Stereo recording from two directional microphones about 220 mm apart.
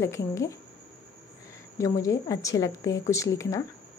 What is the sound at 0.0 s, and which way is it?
Speech, 15° left (ahead or behind).